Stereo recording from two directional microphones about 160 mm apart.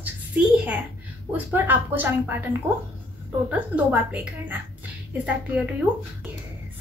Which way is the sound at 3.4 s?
10° right (ahead or behind).